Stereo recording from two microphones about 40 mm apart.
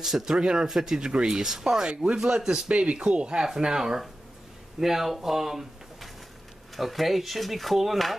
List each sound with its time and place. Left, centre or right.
0.0 s speech: centre
2.7 s speech: right
3.4 s speech: centre